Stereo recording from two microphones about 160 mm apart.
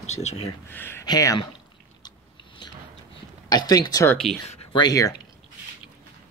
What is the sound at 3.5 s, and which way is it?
Speech, 25° left (ahead or behind).